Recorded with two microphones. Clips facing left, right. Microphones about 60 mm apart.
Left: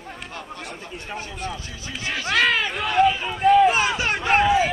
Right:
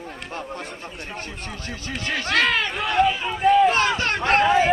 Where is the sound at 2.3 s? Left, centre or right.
Centre.